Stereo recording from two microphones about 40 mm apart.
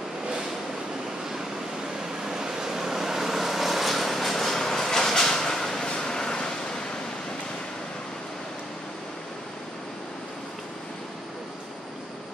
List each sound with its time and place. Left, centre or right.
2.2 s vehicle: centre